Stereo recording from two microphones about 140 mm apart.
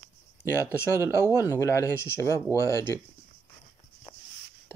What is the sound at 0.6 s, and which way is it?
Speech, 20° left (ahead or behind).